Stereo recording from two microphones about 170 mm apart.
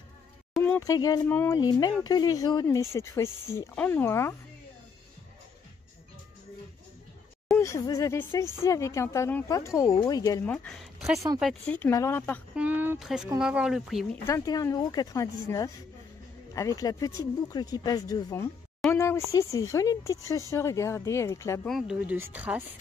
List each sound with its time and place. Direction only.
0.7 s speech: 20° left (ahead or behind)
7.5 s speech: 15° left (ahead or behind)
10.4 s speech: 10° left (ahead or behind)
12.5 s speech: 10° right (ahead or behind)
14.2 s speech: 20° left (ahead or behind)
21.6 s speech: centre (ahead or behind)